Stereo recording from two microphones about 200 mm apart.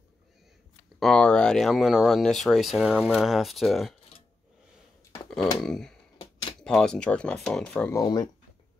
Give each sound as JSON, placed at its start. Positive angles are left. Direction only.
{"t": 0.9, "sound": "speech", "side_deg": 0}
{"t": 5.6, "sound": "speech", "side_deg": 0}
{"t": 8.0, "sound": "speech", "side_deg": 20}